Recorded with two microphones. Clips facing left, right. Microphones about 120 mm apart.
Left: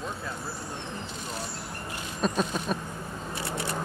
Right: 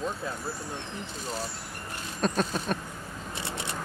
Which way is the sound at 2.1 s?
Centre (ahead or behind).